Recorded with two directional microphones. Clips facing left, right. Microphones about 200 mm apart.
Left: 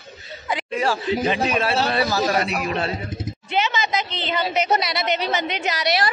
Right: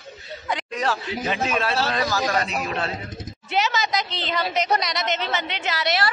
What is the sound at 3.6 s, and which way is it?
A woman's voice, centre (ahead or behind).